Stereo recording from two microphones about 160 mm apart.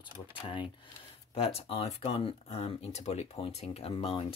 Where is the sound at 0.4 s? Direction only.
35° left (ahead or behind).